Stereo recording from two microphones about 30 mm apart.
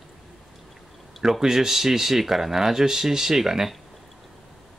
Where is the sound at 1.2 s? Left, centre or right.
Centre.